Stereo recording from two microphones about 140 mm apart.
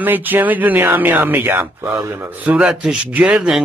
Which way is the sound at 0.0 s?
15° right (ahead or behind).